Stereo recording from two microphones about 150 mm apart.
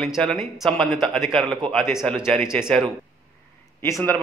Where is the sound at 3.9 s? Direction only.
20° left (ahead or behind).